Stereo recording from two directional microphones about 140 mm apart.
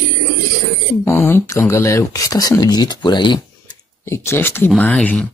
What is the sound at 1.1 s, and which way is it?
Speech, 15° left (ahead or behind).